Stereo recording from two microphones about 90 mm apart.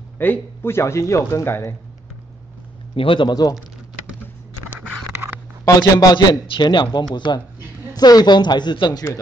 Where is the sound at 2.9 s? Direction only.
80° left.